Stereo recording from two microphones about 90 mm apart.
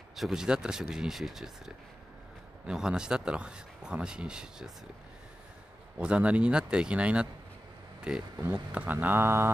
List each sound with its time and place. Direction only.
0.1 s speech: 5° right (ahead or behind)
2.6 s speech: 10° right (ahead or behind)
5.9 s speech: 15° right (ahead or behind)
8.7 s speech: 20° right (ahead or behind)